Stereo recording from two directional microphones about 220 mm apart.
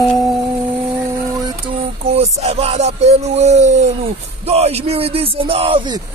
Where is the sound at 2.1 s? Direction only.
30° right (ahead or behind).